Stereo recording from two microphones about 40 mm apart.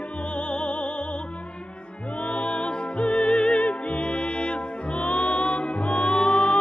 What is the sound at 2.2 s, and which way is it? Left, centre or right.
Music, left.